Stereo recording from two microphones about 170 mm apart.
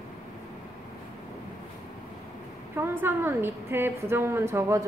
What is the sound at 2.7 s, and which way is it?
A woman's voice, 15° right (ahead or behind).